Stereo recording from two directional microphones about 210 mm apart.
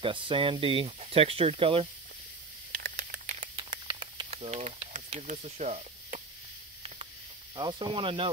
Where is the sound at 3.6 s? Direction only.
20° right (ahead or behind).